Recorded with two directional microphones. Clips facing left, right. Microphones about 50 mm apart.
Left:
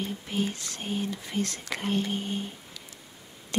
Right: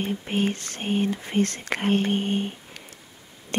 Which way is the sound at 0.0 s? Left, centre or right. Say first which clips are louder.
Right 5 dB; right.